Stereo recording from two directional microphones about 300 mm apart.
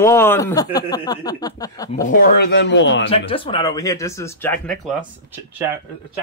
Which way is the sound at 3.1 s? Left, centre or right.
Centre.